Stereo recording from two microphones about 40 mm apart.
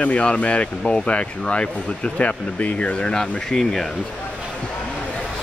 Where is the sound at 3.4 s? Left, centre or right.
Centre.